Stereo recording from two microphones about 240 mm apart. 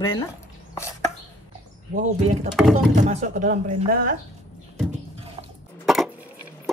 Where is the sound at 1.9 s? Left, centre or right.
Right.